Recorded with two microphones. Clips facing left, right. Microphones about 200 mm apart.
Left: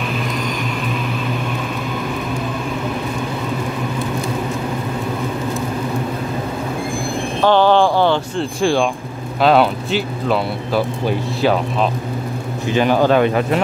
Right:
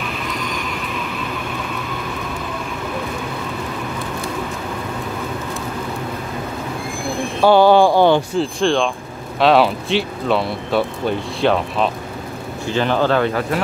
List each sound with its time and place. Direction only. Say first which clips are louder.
7.4 s speech: right 2 dB; 10° right (ahead or behind)
8.4 s speech: even; 10° left (ahead or behind)
12.6 s speech: left 3 dB; 15° left (ahead or behind)